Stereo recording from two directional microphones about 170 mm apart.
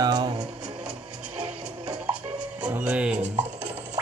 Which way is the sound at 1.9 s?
5° right (ahead or behind).